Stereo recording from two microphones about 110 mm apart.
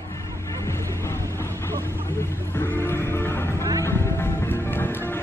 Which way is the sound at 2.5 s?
20° left (ahead or behind).